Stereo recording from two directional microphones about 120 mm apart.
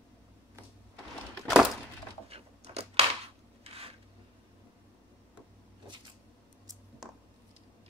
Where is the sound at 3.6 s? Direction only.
55° right (ahead or behind).